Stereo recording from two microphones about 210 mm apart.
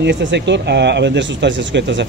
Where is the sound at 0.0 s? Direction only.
55° right (ahead or behind).